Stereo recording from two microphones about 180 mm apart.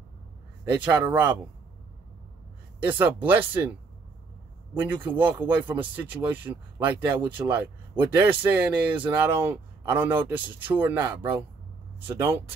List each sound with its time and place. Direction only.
0.7 s speech: 10° right (ahead or behind)
2.9 s speech: 10° right (ahead or behind)
4.7 s speech: 10° right (ahead or behind)
12.1 s speech: 20° right (ahead or behind)